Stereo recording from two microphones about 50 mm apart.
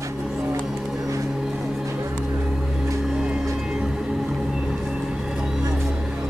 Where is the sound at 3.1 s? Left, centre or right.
Centre.